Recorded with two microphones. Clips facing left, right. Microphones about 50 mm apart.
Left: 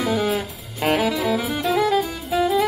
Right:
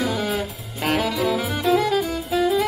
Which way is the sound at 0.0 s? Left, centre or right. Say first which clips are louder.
Left 2 dB; centre.